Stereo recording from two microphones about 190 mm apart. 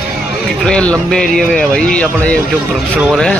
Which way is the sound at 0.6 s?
5° left (ahead or behind).